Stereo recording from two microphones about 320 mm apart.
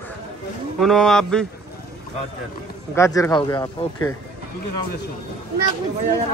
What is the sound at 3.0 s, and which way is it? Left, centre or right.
Speech, centre.